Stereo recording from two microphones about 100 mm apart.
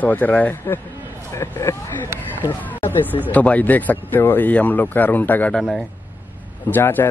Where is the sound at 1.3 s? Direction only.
25° left (ahead or behind).